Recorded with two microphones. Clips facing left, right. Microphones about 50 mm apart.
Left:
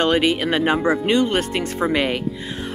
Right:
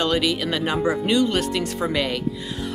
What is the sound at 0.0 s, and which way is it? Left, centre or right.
Speech, left.